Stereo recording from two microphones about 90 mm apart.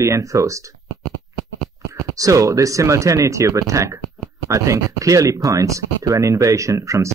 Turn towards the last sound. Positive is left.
turn(degrees=-35)  # may be behind; listen again after turning